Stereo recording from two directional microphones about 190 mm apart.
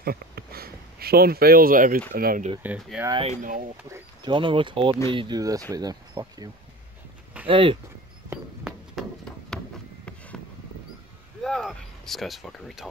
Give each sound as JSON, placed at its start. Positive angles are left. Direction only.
{"t": 0.0, "sound": "speech", "side_deg": -50}
{"t": 2.6, "sound": "speech", "side_deg": -10}
{"t": 3.1, "sound": "speech", "side_deg": -30}
{"t": 8.3, "sound": "a sound", "side_deg": -5}
{"t": 11.4, "sound": "speech", "side_deg": 0}